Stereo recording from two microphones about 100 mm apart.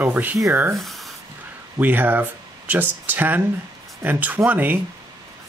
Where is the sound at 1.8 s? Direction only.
20° right (ahead or behind).